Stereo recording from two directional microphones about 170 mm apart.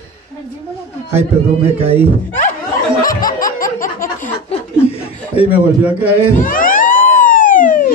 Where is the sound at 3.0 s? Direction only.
55° left (ahead or behind).